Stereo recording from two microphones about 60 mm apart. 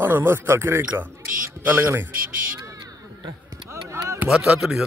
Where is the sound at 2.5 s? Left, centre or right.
Right.